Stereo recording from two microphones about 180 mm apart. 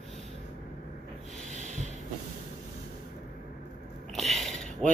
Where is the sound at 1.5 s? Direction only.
40° right (ahead or behind).